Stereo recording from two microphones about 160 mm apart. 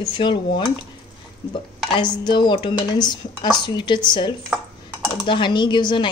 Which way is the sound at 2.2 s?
30° left (ahead or behind).